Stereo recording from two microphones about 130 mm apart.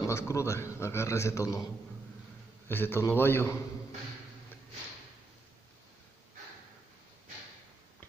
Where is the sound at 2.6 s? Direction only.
15° left (ahead or behind).